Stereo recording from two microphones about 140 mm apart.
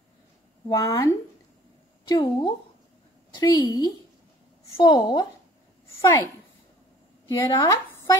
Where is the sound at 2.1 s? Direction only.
35° left (ahead or behind).